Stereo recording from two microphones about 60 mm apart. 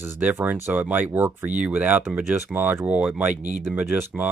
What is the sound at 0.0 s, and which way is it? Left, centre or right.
Speech, right.